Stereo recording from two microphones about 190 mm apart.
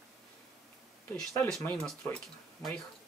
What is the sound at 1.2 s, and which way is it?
Speech, 5° left (ahead or behind).